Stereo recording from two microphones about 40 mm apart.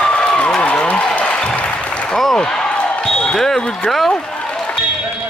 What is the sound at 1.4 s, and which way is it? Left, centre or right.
Applause, left.